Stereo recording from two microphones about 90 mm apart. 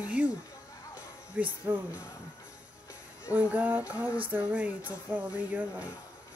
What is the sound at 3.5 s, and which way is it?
Speech, 15° right (ahead or behind).